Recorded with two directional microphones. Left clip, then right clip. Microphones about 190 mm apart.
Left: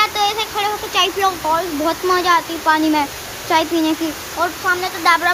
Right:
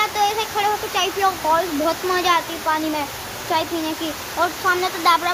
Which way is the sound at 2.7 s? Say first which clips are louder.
Left 10 dB; 25° left (ahead or behind).